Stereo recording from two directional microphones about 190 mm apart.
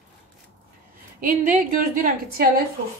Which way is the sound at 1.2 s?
45° right (ahead or behind).